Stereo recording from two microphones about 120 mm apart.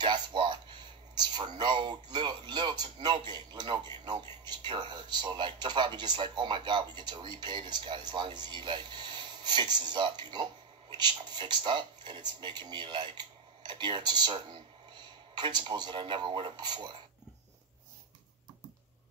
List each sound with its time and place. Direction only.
0.0 s speech: 40° right (ahead or behind)